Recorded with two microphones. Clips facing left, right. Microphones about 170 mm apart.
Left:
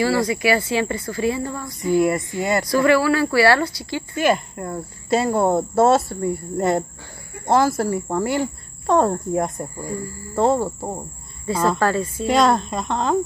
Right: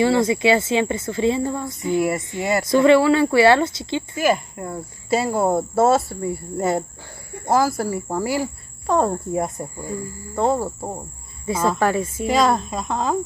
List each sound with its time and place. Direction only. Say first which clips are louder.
0.0 s speech: right 2 dB; 20° right (ahead or behind)
2.0 s speech: left 3 dB; 5° right (ahead or behind)
2.6 s speech: right 4 dB; 20° right (ahead or behind)
4.1 s speech: left 2 dB; 5° right (ahead or behind)
11.8 s a woman's voice: even; 15° right (ahead or behind)
12.3 s speech: left 2 dB; centre (ahead or behind)